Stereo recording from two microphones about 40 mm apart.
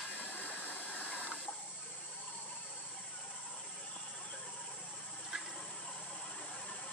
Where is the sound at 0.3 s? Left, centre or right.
Left.